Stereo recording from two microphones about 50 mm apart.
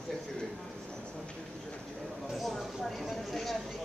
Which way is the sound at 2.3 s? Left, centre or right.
Centre.